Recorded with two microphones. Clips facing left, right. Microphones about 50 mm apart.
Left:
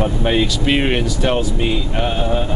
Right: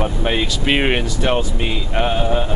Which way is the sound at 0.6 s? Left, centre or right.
Centre.